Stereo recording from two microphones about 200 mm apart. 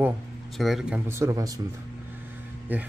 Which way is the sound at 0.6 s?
Centre (ahead or behind).